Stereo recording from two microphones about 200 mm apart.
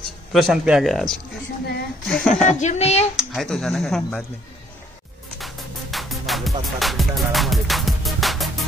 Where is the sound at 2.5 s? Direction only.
35° left (ahead or behind).